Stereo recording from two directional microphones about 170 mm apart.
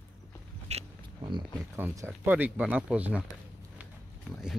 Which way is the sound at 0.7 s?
40° right (ahead or behind).